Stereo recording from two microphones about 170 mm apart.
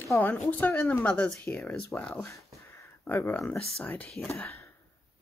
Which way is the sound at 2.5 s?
15° left (ahead or behind).